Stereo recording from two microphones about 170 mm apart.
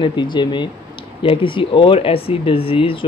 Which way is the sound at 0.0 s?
25° left (ahead or behind).